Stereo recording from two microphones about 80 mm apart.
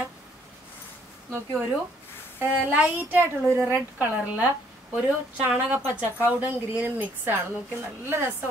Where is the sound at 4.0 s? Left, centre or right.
Centre.